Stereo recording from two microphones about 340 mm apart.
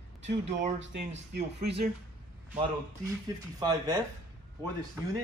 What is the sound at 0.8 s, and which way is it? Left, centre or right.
Speech, right.